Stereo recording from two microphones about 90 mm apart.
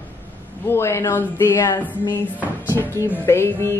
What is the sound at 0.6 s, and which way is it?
Music, 30° left (ahead or behind).